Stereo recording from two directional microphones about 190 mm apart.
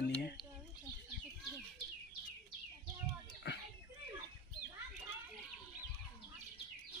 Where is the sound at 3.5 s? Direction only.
70° left (ahead or behind).